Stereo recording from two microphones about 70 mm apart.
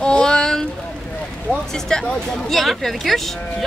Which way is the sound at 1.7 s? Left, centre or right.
Centre.